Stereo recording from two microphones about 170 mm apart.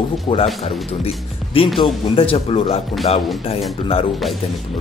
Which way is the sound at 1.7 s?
30° left (ahead or behind).